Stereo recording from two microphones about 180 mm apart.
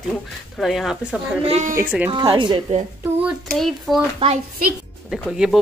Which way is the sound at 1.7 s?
10° right (ahead or behind).